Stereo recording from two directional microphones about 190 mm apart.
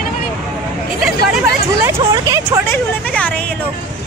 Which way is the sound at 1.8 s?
15° right (ahead or behind).